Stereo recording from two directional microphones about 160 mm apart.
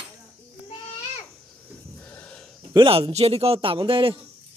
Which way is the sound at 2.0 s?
10° left (ahead or behind).